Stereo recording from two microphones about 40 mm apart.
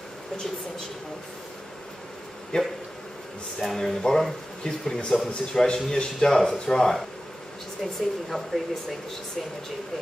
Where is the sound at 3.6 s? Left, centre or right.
Centre.